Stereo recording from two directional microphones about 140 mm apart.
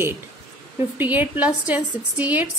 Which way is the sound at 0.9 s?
15° right (ahead or behind).